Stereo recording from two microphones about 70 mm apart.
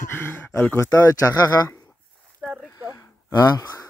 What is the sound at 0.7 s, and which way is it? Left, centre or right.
Speech, left.